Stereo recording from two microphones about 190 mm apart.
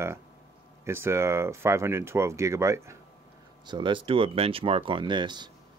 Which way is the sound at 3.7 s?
25° right (ahead or behind).